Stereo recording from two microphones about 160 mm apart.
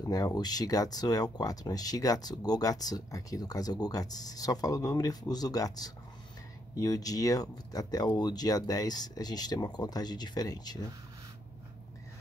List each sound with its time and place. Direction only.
0.0 s speech: 25° left (ahead or behind)